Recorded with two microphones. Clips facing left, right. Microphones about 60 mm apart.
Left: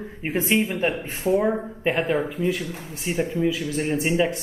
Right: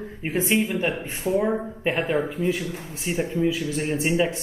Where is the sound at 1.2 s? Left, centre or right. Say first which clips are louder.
Left 2 dB; centre.